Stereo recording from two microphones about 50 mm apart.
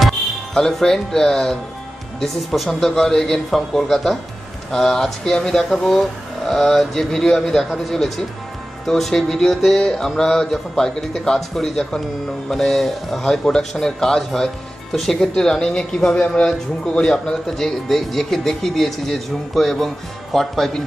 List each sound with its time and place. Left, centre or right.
0.6 s a man's voice: centre